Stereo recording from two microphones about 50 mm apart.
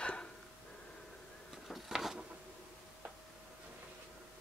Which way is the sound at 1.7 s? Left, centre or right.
Centre.